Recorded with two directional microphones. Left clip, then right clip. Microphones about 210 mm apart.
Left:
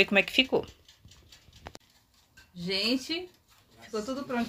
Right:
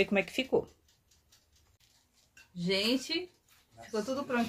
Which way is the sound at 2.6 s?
5° left (ahead or behind).